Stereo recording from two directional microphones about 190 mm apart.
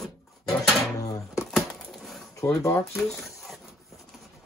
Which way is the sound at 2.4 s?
15° left (ahead or behind).